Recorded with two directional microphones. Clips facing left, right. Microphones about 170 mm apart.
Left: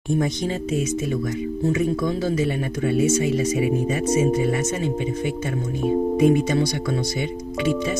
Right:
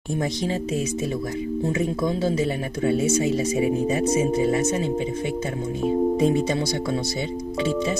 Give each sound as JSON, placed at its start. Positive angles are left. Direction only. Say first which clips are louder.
{"t": 0.2, "sound": "speech", "louder": "left 1 dB", "side_deg": -30}
{"t": 6.1, "sound": "speech", "louder": "left 3 dB", "side_deg": -25}